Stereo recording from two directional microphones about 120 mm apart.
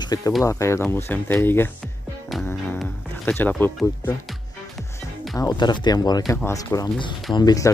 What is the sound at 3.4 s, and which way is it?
Speech, 15° left (ahead or behind).